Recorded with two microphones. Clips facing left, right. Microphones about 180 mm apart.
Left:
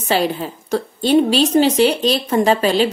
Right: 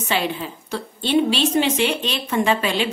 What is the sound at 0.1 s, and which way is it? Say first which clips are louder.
A woman's voice: left 6 dB; 40° left (ahead or behind).